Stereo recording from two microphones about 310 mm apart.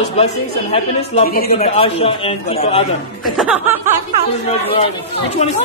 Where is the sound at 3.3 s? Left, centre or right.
Centre.